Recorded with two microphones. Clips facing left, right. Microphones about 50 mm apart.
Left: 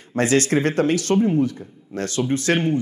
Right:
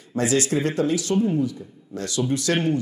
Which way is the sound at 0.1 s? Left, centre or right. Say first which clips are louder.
Left 3 dB; left.